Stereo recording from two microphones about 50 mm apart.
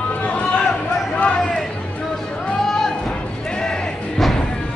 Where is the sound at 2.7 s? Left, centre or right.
Centre.